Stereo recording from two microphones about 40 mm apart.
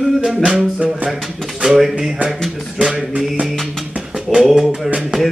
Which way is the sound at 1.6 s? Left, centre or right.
Centre.